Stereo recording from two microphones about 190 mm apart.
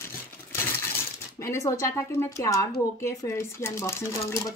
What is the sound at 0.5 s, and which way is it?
Coin, 15° left (ahead or behind).